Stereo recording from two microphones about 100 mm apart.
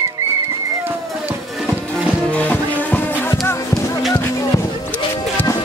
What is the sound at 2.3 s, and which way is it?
Music, 15° left (ahead or behind).